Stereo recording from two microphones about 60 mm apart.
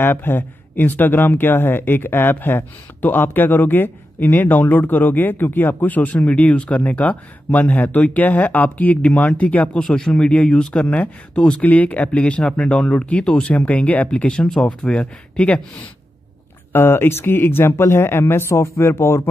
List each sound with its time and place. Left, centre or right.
0.0 s speech: left
9.8 s speech: centre
10.1 s speech: left
16.7 s speech: left